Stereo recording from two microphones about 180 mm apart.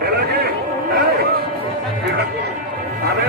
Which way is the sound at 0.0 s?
65° right (ahead or behind).